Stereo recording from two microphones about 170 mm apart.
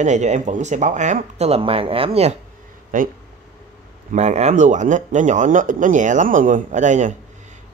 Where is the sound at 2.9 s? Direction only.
50° right (ahead or behind).